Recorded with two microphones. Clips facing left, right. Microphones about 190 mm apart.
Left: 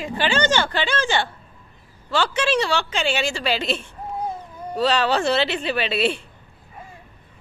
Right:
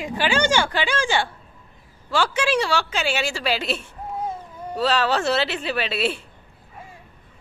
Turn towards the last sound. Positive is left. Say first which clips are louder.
# left 2 dB
turn(degrees=-5)  # may be behind; listen again after turning